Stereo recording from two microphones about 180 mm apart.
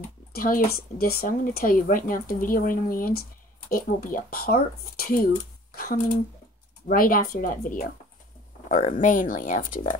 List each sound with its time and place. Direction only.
0.3 s speech: 55° left (ahead or behind)
8.6 s a sound: 45° left (ahead or behind)
9.0 s speech: 50° left (ahead or behind)